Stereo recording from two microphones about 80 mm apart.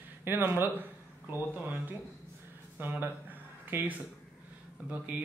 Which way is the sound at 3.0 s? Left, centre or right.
Right.